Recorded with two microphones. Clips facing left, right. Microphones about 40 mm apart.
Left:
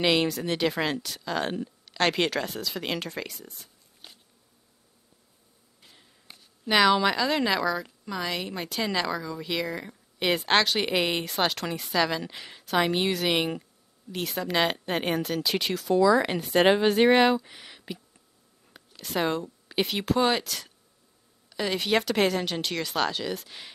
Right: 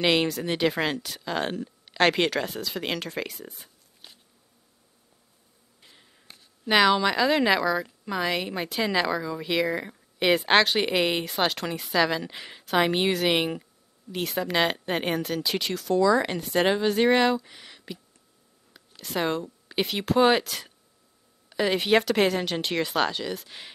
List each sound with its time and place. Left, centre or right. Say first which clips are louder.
0.0 s a woman's voice: right 1 dB; centre
3.4 s speech: right 3 dB; right
5.8 s a sound: right 1 dB; centre
7.2 s a woman's voice: right 3 dB; centre
16.6 s speech: left 3 dB; left
16.9 s speech: left 1 dB; centre
20.2 s a woman's voice: right 6 dB; centre
22.7 s a woman's voice: right 4 dB; centre